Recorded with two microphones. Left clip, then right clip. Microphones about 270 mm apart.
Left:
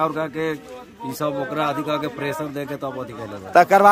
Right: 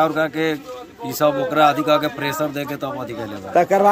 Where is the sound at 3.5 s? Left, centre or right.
Centre.